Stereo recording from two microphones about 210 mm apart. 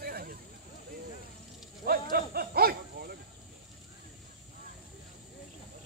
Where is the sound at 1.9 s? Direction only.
45° right (ahead or behind).